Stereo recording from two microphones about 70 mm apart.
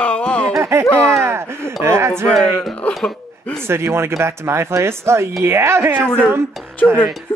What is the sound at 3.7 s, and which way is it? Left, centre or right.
Speech, right.